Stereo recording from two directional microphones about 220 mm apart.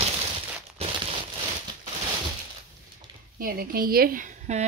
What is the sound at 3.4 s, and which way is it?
Speech, 40° right (ahead or behind).